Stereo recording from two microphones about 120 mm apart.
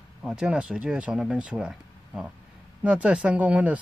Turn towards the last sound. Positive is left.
turn(degrees=-10)  # may be behind; listen again after turning